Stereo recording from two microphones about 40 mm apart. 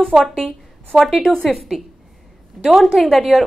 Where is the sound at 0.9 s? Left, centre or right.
Centre.